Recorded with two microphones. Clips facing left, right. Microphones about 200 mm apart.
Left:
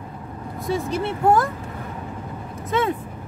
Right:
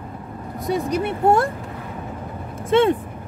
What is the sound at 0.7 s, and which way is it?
Speech, 20° right (ahead or behind).